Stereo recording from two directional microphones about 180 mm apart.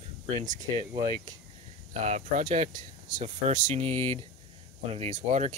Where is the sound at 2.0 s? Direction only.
40° right (ahead or behind).